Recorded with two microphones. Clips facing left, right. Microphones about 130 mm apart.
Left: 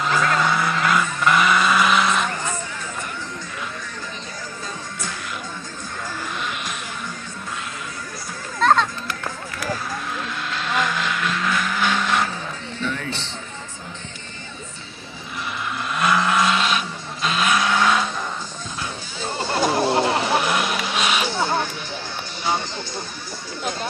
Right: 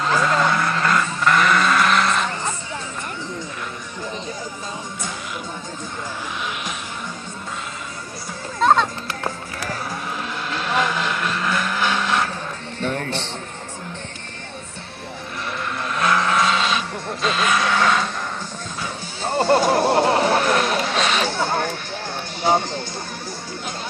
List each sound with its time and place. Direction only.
0.0 s sheep: 5° left (ahead or behind)
8.5 s music: 10° right (ahead or behind)
9.0 s music: 30° right (ahead or behind)
10.8 s blender: centre (ahead or behind)
12.8 s music: 50° right (ahead or behind)
15.8 s vehicle: 5° left (ahead or behind)
19.2 s music: 60° right (ahead or behind)
20.3 s vehicle: 10° left (ahead or behind)
21.3 s a sound: 55° right (ahead or behind)
22.5 s music: 55° right (ahead or behind)